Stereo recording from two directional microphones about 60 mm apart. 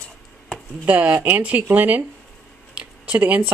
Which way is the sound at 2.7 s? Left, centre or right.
Right.